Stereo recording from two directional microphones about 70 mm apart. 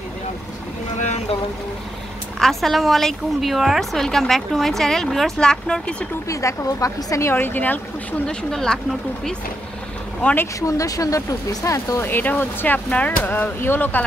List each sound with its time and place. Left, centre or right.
2.3 s a woman's voice: centre
6.2 s speech: left
7.2 s speech: left
8.3 s speech: centre
10.8 s speech: left
12.0 s speech: left